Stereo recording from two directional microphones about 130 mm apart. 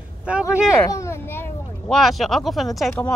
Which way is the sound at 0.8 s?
25° left (ahead or behind).